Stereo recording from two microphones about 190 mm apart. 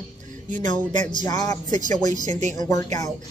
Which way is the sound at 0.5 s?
40° right (ahead or behind).